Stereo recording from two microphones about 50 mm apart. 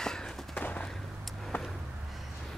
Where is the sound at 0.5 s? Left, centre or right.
Left.